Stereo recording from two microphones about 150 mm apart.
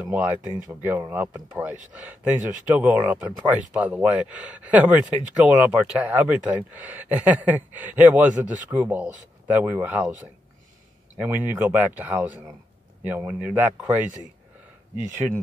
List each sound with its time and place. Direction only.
0.0 s speech: 10° right (ahead or behind)